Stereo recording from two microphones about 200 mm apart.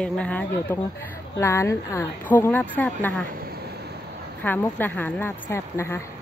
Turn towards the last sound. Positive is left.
turn(degrees=15)  # may be behind; listen again after turning